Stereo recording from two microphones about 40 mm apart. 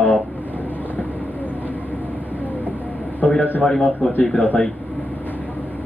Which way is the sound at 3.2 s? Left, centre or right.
Left.